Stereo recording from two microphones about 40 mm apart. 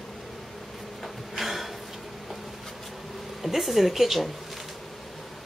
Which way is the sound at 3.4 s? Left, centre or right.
Centre.